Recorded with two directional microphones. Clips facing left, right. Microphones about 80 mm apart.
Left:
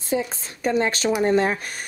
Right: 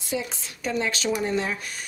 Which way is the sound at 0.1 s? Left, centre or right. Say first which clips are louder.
Left 5 dB; left.